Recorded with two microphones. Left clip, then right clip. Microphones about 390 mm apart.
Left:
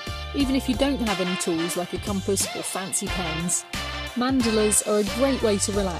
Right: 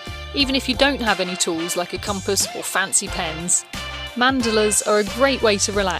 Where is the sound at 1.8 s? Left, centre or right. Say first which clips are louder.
Right 5 dB; right.